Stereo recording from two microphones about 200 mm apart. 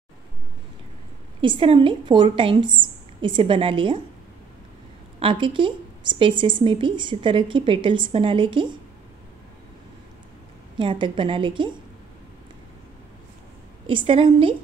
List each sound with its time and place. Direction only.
1.4 s a woman's voice: 25° right (ahead or behind)
5.2 s a woman's voice: 25° right (ahead or behind)
10.8 s a woman's voice: 25° right (ahead or behind)
13.8 s a woman's voice: 25° right (ahead or behind)